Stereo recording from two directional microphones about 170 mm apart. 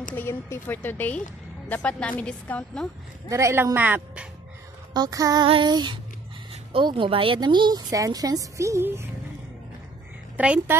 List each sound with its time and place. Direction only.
0.1 s a woman's voice: 15° left (ahead or behind)
3.3 s speech: 15° right (ahead or behind)
4.9 s a woman's voice: 20° right (ahead or behind)
10.3 s a woman's voice: 10° right (ahead or behind)